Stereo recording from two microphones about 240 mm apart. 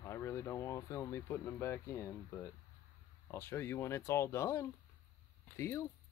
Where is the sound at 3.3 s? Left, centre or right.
Centre.